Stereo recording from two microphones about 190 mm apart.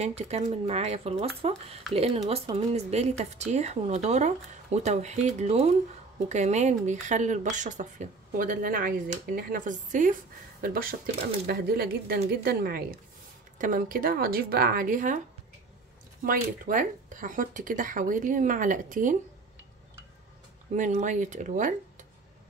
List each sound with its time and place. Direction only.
0.0 s speech: 35° right (ahead or behind)
16.3 s speech: 45° right (ahead or behind)
20.7 s speech: 40° right (ahead or behind)